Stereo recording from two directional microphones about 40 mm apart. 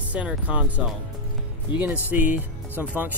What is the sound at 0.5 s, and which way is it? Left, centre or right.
Speech, right.